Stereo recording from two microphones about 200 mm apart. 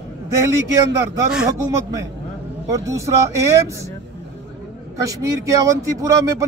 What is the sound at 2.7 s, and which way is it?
Speech, 15° right (ahead or behind).